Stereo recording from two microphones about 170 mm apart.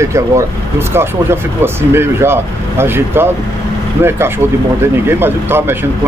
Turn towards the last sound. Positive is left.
turn(degrees=-15)  # may be behind; listen again after turning